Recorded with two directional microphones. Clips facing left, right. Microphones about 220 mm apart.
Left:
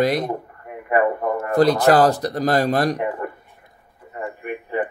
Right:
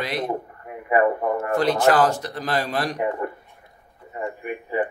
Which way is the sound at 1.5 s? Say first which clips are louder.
Left 5 dB; 35° left (ahead or behind).